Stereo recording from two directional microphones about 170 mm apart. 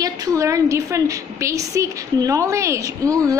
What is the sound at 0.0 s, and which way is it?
A woman's voice, 20° right (ahead or behind).